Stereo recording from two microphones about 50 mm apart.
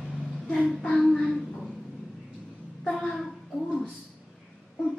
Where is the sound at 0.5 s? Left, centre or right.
Centre.